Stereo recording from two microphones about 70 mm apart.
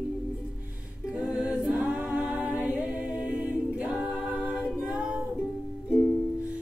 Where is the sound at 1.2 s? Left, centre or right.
Centre.